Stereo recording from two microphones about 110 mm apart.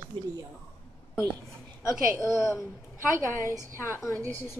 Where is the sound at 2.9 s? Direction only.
25° right (ahead or behind).